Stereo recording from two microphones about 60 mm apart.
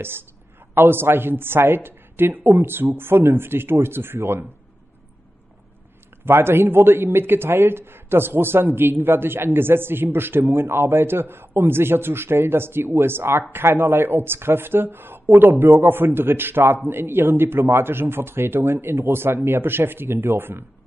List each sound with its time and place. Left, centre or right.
0.7 s a man's voice: right
6.2 s a man's voice: right